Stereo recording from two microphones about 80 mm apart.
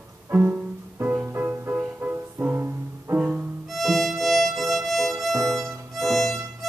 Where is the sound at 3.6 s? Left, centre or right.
Centre.